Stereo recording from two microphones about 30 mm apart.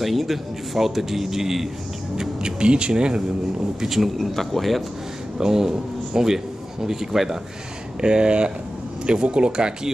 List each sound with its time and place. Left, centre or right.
0.0 s a man's voice: centre
2.1 s speech: right
3.9 s speech: centre
5.4 s a man's voice: centre
8.0 s speech: right